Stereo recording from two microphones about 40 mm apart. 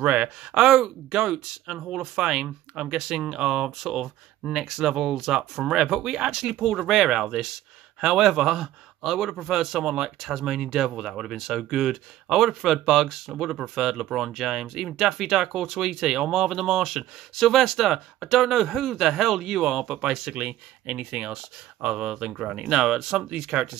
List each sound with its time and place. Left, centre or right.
0.0 s speech: right
3.8 s speech: centre
6.5 s speech: centre; by 22.6 s right
22.6 s speech: centre